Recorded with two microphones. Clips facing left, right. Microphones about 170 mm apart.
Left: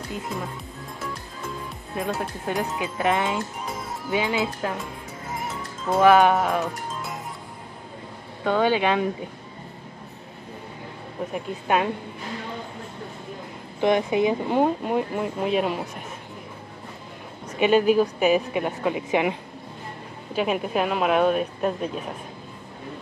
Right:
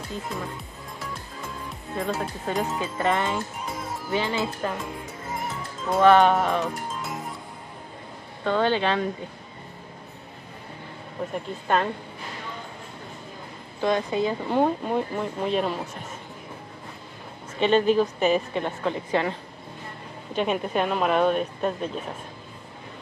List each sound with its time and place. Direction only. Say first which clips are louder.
2.0 s speech: left 1 dB; 5° left (ahead or behind)
2.8 s a woman's voice: left 1 dB; 15° left (ahead or behind)
5.4 s music: even; centre (ahead or behind)
8.5 s a woman's voice: left 2 dB; 10° left (ahead or behind)
11.3 s a woman's voice: left 1 dB; 10° left (ahead or behind)
13.7 s a woman's voice: left 3 dB; 20° left (ahead or behind)
14.6 s a woman's voice: right 1 dB; 5° left (ahead or behind)
17.6 s a woman's voice: left 2 dB; 10° left (ahead or behind)
20.3 s speech: left 1 dB; 5° left (ahead or behind)